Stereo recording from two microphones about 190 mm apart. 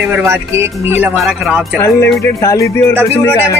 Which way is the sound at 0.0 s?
10° right (ahead or behind).